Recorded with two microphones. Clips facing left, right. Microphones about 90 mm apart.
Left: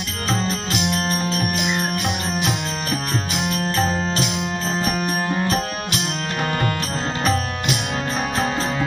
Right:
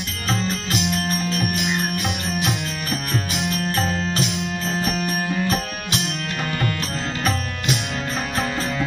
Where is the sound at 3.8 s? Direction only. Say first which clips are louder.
Left 1 dB; 30° left (ahead or behind).